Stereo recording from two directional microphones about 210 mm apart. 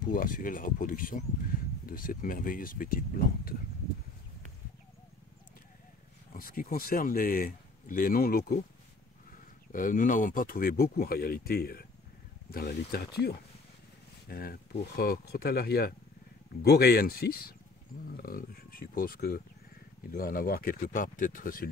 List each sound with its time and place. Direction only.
0.0 s speech: 40° left (ahead or behind)
6.3 s speech: 40° left (ahead or behind)
9.7 s speech: 40° left (ahead or behind)